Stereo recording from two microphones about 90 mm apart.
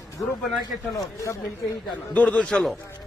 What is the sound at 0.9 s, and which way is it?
Speech, 35° left (ahead or behind).